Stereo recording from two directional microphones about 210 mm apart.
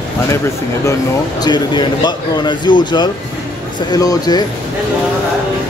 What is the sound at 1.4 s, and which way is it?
A man's voice, 20° left (ahead or behind).